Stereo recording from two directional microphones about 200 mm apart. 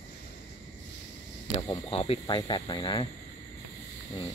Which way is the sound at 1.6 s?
25° left (ahead or behind).